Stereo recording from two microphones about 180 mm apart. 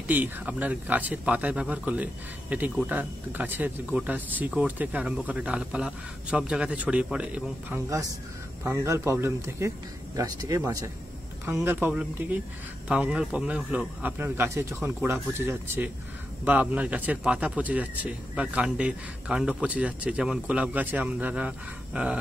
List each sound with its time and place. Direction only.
0.1 s speech: 10° right (ahead or behind)